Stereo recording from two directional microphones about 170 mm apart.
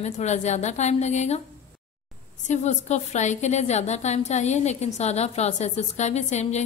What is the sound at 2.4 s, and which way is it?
A woman's voice, 45° left (ahead or behind).